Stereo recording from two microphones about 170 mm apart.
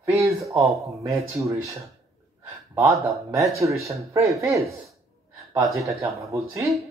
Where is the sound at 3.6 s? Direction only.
20° right (ahead or behind).